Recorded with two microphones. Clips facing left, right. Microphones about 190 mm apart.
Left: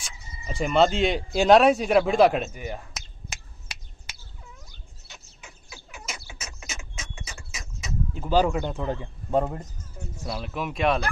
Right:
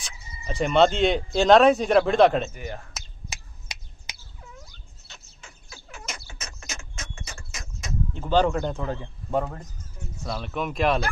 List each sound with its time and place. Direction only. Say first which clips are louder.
0.0 s speech: right 1 dB; 5° left (ahead or behind)
3.3 s finger snapping: right 1 dB; 15° right (ahead or behind)
5.0 s a sound: left 1 dB; 15° left (ahead or behind)
6.0 s bird: even; 5° left (ahead or behind)
10.2 s speech: right 2 dB; 5° left (ahead or behind)